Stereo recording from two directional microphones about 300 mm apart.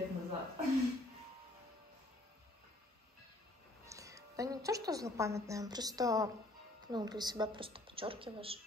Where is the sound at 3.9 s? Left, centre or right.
Centre.